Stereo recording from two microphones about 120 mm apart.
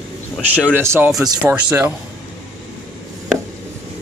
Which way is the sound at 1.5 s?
15° right (ahead or behind).